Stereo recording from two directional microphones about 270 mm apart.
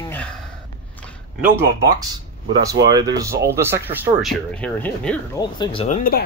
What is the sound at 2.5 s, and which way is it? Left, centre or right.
Speech, centre.